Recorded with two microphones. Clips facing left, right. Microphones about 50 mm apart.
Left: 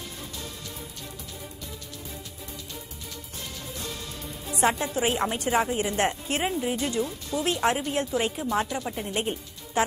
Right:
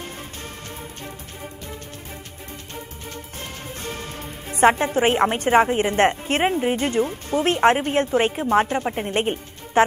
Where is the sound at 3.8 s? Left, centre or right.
Right.